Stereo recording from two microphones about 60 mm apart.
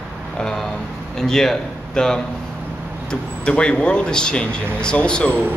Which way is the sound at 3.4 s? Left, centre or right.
Centre.